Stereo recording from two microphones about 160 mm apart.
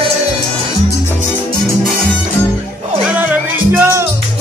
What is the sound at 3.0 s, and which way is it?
Music, 10° right (ahead or behind).